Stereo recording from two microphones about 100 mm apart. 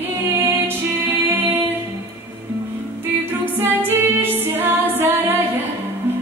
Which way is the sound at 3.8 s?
20° right (ahead or behind).